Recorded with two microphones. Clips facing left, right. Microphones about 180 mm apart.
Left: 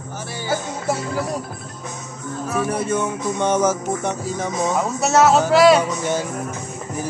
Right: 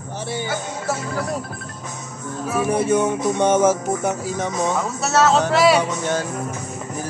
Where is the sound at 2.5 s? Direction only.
10° right (ahead or behind).